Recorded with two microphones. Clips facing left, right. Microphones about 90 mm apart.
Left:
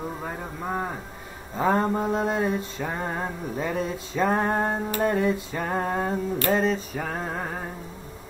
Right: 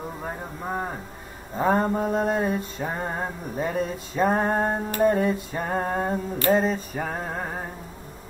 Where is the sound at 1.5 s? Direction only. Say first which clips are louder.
Right 1 dB; 5° right (ahead or behind).